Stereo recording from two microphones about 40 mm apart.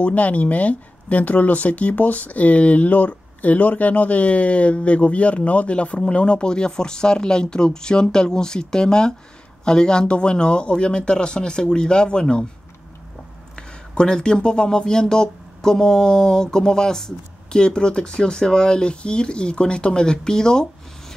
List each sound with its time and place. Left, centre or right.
0.0 s speech: left
13.6 s speech: left